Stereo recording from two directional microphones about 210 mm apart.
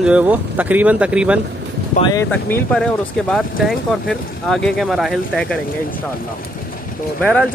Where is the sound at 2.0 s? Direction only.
15° left (ahead or behind).